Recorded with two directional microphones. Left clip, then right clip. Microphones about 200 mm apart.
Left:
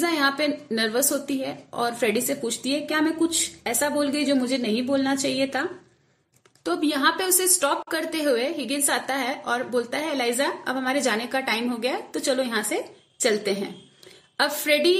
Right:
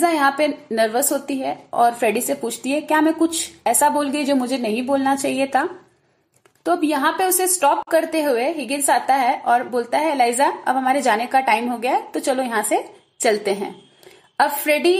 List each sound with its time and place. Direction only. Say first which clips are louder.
0.1 s a woman's voice: right 5 dB; 5° left (ahead or behind)